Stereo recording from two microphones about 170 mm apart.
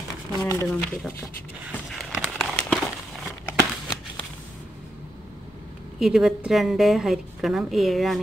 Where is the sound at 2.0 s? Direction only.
Centre (ahead or behind).